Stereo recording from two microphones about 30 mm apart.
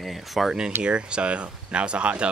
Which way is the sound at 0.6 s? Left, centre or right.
Right.